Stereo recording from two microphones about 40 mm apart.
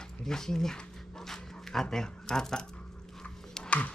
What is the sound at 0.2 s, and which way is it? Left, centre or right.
Speech, centre.